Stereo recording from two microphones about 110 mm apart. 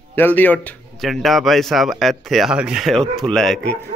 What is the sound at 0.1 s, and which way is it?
Speech, 15° left (ahead or behind).